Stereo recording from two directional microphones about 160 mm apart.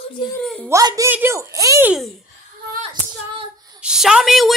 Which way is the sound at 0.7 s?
20° right (ahead or behind).